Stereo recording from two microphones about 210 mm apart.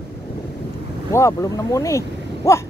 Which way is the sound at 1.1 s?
15° left (ahead or behind).